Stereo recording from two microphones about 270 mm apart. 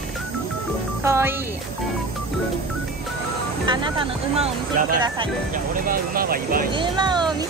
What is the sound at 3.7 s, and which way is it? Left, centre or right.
Speech, centre.